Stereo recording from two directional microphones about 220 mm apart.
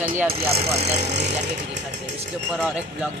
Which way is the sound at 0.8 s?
30° right (ahead or behind).